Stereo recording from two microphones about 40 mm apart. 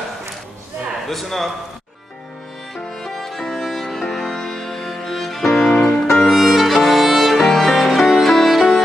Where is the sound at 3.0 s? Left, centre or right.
Centre.